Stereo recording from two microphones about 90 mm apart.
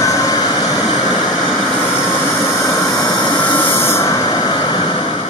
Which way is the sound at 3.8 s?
30° left (ahead or behind).